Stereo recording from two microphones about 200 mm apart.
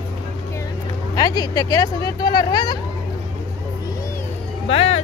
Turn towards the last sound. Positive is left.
turn(degrees=30)  # may be behind; listen again after turning